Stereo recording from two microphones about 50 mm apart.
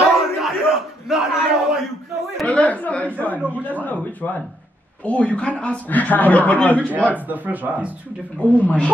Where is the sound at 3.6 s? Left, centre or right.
Left.